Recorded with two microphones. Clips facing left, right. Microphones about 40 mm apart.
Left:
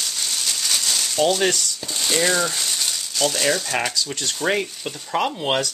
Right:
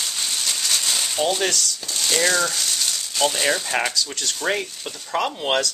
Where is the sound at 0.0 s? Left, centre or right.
Centre.